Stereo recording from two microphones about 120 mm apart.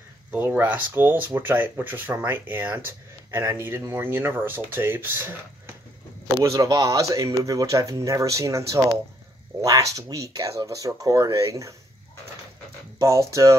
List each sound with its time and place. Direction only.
0.3 s speech: 15° right (ahead or behind)
6.4 s speech: 25° right (ahead or behind)
13.0 s speech: 25° right (ahead or behind)